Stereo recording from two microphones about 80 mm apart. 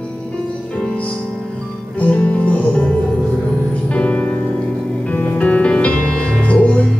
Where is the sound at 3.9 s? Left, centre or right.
Centre.